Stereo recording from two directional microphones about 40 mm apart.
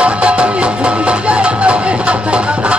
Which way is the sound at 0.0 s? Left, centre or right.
Right.